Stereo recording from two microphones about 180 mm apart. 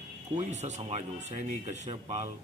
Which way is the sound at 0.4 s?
40° right (ahead or behind).